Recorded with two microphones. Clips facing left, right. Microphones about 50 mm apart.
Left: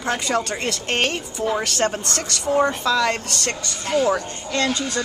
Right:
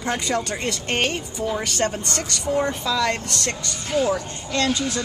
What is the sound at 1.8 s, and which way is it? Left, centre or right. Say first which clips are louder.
Speech: left 2 dB; centre.